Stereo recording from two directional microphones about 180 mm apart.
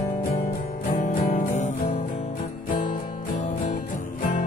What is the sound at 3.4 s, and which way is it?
Music, 35° left (ahead or behind).